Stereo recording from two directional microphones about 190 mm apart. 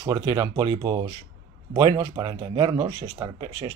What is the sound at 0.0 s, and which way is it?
Speech, 20° right (ahead or behind).